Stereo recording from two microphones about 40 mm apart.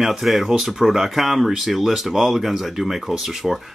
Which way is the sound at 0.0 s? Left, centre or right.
Centre.